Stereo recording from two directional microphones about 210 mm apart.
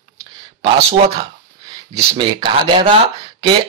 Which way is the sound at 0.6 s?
20° right (ahead or behind).